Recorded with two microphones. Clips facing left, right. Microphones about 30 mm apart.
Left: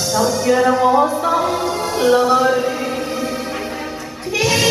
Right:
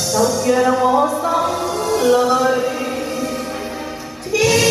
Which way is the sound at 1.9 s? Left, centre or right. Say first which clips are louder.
Even; left.